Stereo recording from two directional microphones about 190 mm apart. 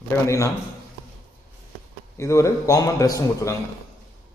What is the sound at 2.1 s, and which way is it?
A man's voice, 15° left (ahead or behind).